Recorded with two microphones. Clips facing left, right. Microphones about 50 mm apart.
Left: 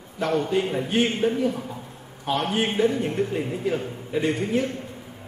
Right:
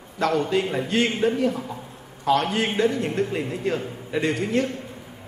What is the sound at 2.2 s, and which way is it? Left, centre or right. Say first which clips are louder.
A man's voice: right 3 dB; right.